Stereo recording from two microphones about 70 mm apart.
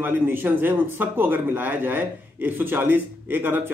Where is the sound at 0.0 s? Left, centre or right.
Right.